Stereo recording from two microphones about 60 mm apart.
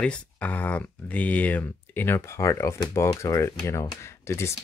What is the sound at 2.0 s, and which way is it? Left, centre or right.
Speech, left.